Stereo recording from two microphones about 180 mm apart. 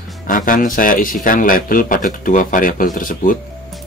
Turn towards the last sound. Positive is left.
turn(degrees=50)  # may be behind; listen again after turning